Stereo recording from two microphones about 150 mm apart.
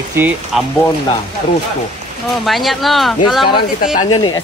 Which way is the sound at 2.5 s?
Centre (ahead or behind).